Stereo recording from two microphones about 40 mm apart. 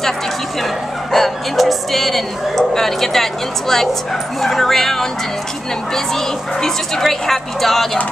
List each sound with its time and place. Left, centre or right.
1.1 s a woman's voice: centre